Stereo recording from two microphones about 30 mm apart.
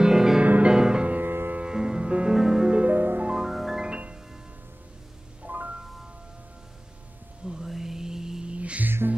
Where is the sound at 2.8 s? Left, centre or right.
Right.